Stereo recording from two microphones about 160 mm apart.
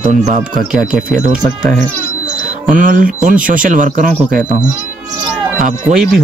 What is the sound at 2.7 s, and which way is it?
Speech, 55° right (ahead or behind).